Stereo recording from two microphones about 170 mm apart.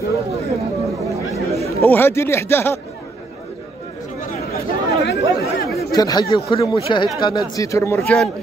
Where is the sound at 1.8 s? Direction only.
15° left (ahead or behind).